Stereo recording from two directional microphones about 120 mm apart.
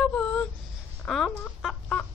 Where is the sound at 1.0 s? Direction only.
5° left (ahead or behind).